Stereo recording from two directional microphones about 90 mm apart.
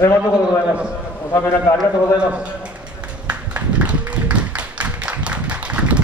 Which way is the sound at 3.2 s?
15° right (ahead or behind).